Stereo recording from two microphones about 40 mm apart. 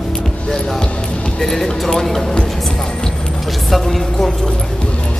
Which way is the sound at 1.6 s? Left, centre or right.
Centre.